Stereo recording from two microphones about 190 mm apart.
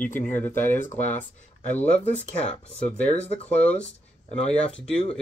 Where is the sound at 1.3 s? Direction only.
40° left (ahead or behind).